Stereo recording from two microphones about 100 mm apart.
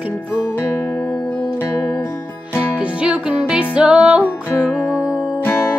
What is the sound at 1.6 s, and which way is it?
Music, 30° left (ahead or behind).